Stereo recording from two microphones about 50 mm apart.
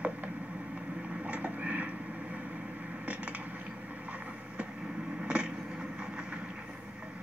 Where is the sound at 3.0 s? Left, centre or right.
Right.